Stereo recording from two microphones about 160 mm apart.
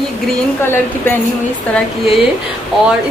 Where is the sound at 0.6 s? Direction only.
15° left (ahead or behind).